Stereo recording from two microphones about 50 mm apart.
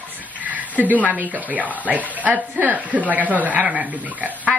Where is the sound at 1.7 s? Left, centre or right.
Right.